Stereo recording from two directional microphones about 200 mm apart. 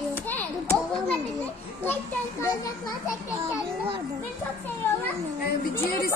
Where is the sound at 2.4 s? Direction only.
15° left (ahead or behind).